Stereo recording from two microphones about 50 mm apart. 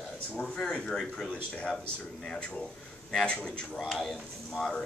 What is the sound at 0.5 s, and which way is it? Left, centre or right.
Speech, centre.